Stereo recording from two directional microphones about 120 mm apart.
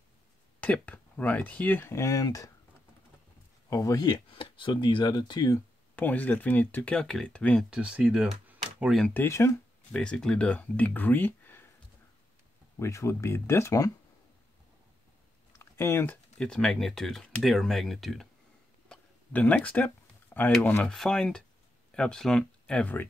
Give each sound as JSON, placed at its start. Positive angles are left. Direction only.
{"t": 0.6, "sound": "speech", "side_deg": 15}
{"t": 3.7, "sound": "speech", "side_deg": 30}
{"t": 4.3, "sound": "speech", "side_deg": 45}
{"t": 5.9, "sound": "speech", "side_deg": 15}
{"t": 7.7, "sound": "speech", "side_deg": -10}
{"t": 9.1, "sound": "speech", "side_deg": 20}
{"t": 9.9, "sound": "speech", "side_deg": 5}
{"t": 12.7, "sound": "speech", "side_deg": 25}
{"t": 15.6, "sound": "speech", "side_deg": 20}
{"t": 16.3, "sound": "speech", "side_deg": 5}
{"t": 18.9, "sound": "a sound", "side_deg": 15}
{"t": 20.8, "sound": "speech", "side_deg": 5}